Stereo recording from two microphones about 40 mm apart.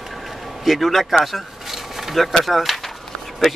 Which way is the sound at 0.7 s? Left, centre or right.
Centre.